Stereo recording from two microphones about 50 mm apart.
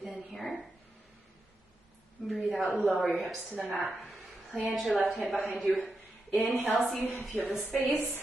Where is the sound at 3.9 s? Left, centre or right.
Centre.